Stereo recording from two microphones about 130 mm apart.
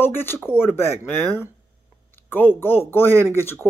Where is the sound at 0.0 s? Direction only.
15° left (ahead or behind).